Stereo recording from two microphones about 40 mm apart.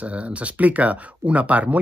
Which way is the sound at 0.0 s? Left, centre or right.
Right.